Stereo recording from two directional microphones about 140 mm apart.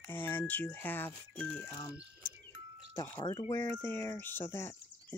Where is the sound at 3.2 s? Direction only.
30° left (ahead or behind).